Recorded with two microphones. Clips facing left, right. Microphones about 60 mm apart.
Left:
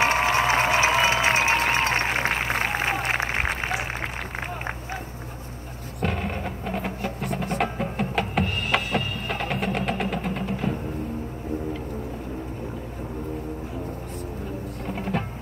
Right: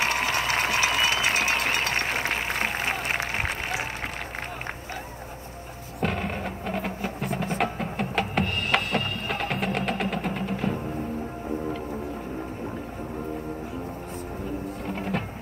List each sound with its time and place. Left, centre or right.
0.0 s a sound: left
3.0 s applause: left
5.9 s music: centre
14.9 s music: centre